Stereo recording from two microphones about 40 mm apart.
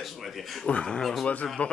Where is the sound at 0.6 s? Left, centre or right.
Left.